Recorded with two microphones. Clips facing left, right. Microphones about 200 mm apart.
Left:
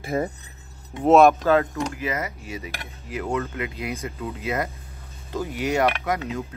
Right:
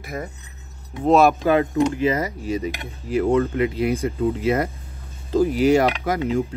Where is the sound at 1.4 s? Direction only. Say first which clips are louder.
Right 1 dB; 15° right (ahead or behind).